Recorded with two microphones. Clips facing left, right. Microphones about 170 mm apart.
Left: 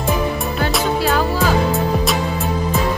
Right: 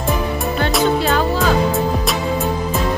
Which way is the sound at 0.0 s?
Centre (ahead or behind).